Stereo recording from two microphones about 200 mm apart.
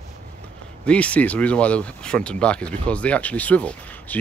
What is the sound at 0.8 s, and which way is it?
Speech, 5° left (ahead or behind).